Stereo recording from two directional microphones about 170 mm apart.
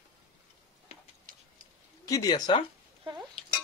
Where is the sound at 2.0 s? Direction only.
20° left (ahead or behind).